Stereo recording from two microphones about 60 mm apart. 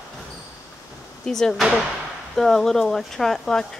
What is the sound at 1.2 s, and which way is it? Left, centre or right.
Speech, centre.